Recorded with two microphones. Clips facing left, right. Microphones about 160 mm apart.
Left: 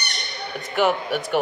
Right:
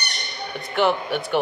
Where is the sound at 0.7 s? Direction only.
5° left (ahead or behind).